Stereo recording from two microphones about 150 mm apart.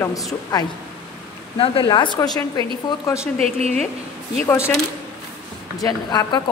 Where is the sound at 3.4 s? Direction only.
45° right (ahead or behind).